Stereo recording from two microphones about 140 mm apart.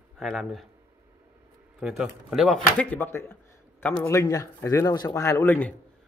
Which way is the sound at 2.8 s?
15° left (ahead or behind).